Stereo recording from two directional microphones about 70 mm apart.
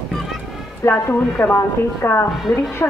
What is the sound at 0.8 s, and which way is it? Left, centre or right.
Speech, left.